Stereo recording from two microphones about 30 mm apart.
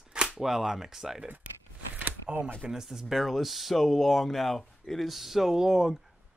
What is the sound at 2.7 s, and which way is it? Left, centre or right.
Speech, centre.